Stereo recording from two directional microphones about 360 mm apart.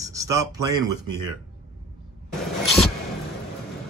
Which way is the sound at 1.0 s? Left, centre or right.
Right.